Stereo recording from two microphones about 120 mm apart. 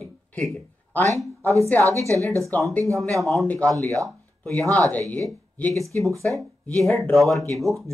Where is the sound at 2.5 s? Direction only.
15° left (ahead or behind).